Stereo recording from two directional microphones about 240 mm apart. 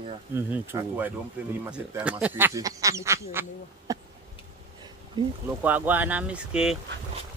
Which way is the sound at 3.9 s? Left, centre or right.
Centre.